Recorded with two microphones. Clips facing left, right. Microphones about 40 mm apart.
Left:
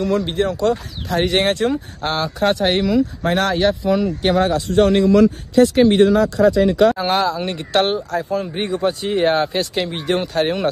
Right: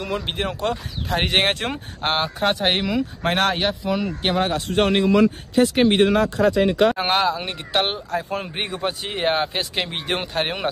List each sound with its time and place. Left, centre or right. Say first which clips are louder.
0.0 s speech: left 8 dB; centre
0.3 s speech: left 6 dB; right
2.0 s speech: left 2 dB; right
3.2 s speech: left 2 dB; right
3.6 s speech: left 6 dB; centre
4.6 s speech: left 5 dB; right
5.1 s speech: left 4 dB; right
5.9 s speech: left 4 dB; right; by 8.0 s centre
8.3 s speech: left 5 dB; right
8.8 s speech: left 6 dB; right